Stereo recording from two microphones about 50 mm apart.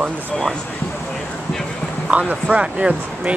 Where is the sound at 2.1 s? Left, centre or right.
Right.